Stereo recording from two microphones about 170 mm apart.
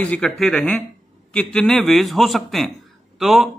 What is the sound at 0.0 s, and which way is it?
Speech, 5° left (ahead or behind).